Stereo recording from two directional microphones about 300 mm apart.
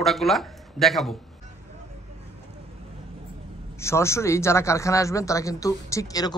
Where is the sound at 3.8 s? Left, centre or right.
Centre.